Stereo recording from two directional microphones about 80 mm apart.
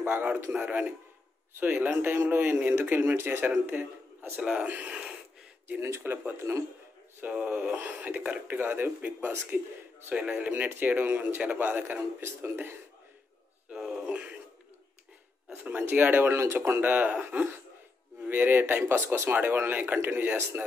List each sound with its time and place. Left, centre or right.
0.0 s a man's voice: right
4.4 s a man's voice: centre
5.8 s speech: right
13.7 s music: centre
15.5 s speech: centre